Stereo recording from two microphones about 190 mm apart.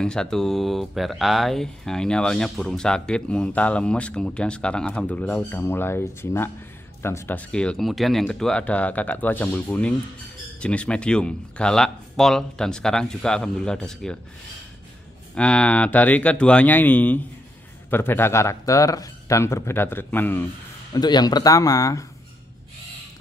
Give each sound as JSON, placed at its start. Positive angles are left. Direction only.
{"t": 0.0, "sound": "speech", "side_deg": 5}
{"t": 15.3, "sound": "speech", "side_deg": 5}
{"t": 20.9, "sound": "speech", "side_deg": 20}